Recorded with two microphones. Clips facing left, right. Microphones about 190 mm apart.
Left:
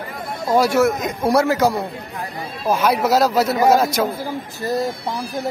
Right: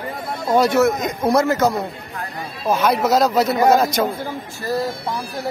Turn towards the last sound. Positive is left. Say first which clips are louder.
# left 1 dB
turn(degrees=20)  # may be behind; listen again after turning